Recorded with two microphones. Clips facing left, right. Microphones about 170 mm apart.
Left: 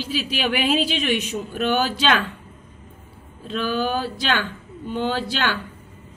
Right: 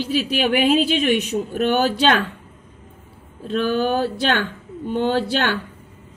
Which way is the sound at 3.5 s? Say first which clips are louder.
Right 4 dB; 55° right (ahead or behind).